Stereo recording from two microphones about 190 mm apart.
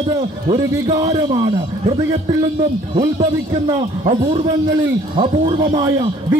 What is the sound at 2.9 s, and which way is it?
A man's voice, 25° right (ahead or behind).